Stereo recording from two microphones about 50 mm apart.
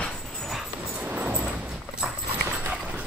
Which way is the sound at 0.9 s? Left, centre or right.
Right.